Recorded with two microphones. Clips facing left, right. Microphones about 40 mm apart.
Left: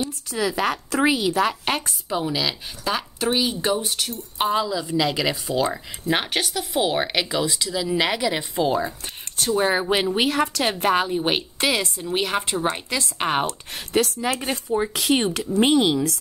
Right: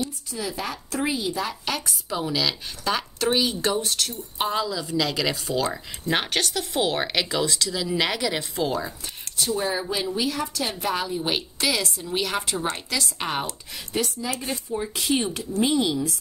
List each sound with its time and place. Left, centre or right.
0.3 s a woman's voice: left
1.5 s speech: left
2.0 s speech: centre
9.6 s a woman's voice: left
13.7 s speech: left